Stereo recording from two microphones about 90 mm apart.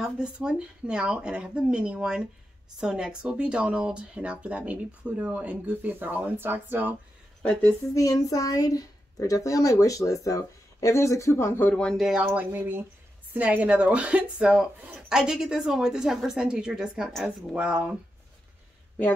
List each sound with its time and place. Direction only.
0.0 s speech: 10° right (ahead or behind)
7.9 s speech: 40° left (ahead or behind)
11.6 s speech: 10° left (ahead or behind)
12.0 s speech: 5° right (ahead or behind)
12.3 s speech: 25° right (ahead or behind)